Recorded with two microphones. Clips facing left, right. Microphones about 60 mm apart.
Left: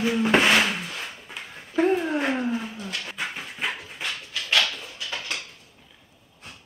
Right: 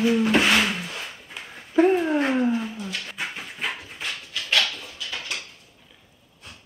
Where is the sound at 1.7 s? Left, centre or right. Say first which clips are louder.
Right 3 dB; centre.